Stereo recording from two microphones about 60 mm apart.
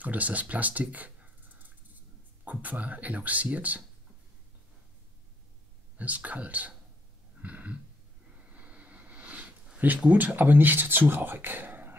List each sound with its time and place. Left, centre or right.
0.0 s speech: right
5.9 s speech: right
7.4 s a sound: right
9.8 s speech: right